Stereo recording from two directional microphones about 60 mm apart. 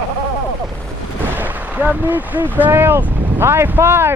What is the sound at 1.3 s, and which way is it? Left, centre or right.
Speech, right.